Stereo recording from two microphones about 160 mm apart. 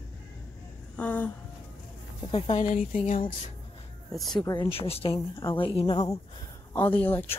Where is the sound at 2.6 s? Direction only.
50° left (ahead or behind).